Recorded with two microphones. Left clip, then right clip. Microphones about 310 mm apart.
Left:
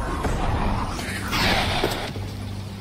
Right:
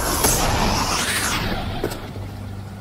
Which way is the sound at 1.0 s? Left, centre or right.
Centre.